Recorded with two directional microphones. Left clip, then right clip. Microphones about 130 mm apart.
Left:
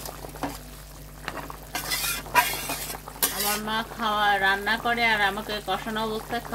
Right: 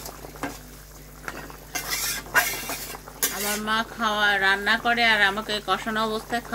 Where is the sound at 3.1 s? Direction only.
15° left (ahead or behind).